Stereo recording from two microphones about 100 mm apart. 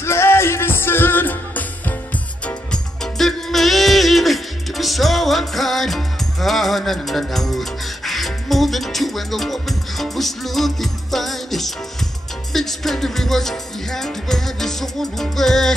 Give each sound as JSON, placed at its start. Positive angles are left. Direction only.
{"t": 0.0, "sound": "music", "side_deg": 25}
{"t": 2.4, "sound": "music", "side_deg": 5}